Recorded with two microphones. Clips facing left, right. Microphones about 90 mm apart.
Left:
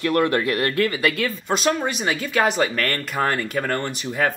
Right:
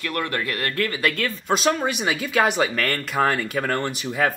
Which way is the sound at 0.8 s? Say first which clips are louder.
Left 2 dB; 5° left (ahead or behind).